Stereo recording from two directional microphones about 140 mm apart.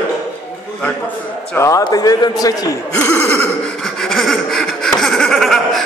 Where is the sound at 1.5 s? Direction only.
20° left (ahead or behind).